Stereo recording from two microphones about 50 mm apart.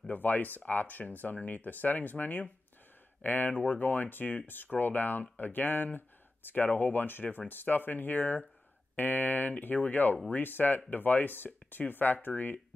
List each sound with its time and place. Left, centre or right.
0.0 s speech: left